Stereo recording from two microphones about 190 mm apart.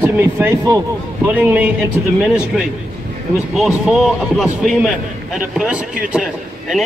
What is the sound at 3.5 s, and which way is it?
A man's voice, centre (ahead or behind).